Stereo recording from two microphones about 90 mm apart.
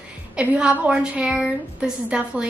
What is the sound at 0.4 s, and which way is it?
A woman's voice, 15° right (ahead or behind).